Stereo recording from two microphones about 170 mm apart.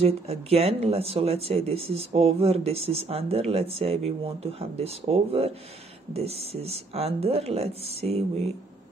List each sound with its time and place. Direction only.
0.0 s speech: 35° right (ahead or behind)